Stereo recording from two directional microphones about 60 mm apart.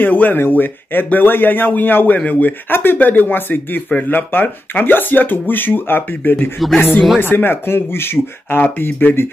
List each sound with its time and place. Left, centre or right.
0.0 s speech: left
6.6 s speech: centre
7.2 s speech: left
8.5 s speech: left
8.8 s speech: left